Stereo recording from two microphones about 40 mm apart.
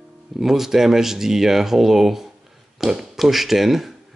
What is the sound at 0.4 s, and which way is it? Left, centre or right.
Speech, centre.